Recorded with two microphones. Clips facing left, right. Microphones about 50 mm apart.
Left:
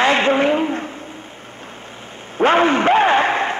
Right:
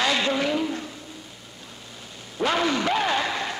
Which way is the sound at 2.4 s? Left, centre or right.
Left.